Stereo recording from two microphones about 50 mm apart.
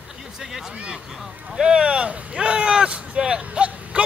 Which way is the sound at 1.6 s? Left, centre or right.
Centre.